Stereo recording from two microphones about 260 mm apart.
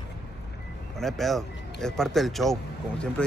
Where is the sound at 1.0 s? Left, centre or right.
Centre.